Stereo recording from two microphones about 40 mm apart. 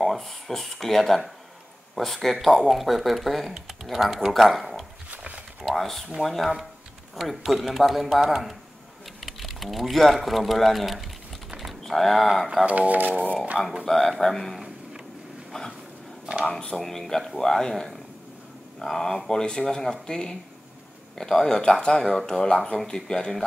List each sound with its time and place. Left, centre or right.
0.0 s speech: centre
5.1 s a sound: right
5.8 s speech: centre
12.6 s speech: right
13.8 s speech: centre
16.4 s speech: left
16.7 s speech: centre